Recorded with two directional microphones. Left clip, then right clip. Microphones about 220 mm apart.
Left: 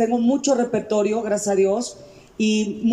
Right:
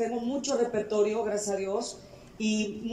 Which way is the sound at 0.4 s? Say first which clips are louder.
Left 7 dB; 50° left (ahead or behind).